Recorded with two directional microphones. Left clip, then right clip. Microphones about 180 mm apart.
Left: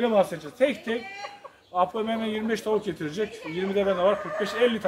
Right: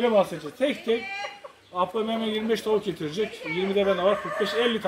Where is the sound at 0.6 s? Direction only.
10° left (ahead or behind).